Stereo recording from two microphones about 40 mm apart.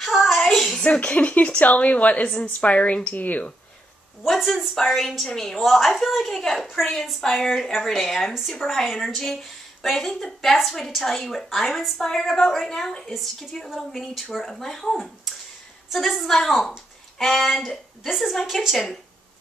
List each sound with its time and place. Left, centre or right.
0.1 s a sound: centre
0.8 s a woman's voice: left
3.2 s speech: left
4.3 s a woman's voice: centre
13.0 s a woman's voice: centre
14.4 s a woman's voice: centre